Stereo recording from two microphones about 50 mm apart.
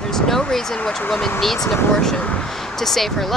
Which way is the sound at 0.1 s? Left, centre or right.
Centre.